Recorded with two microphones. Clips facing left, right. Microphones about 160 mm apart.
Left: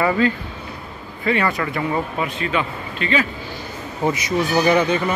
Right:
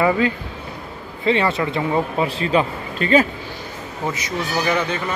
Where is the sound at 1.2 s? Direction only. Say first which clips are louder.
Right 2 dB; 25° right (ahead or behind); by 3.3 s 40° right (ahead or behind).